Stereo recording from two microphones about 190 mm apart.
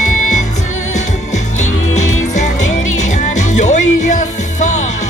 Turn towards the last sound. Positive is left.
turn(degrees=40)  # may be behind; listen again after turning